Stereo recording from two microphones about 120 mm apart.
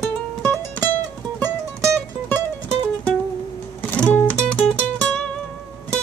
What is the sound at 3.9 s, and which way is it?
Music, 10° left (ahead or behind).